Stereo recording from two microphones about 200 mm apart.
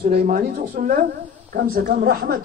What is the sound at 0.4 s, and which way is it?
A man's voice, 45° right (ahead or behind).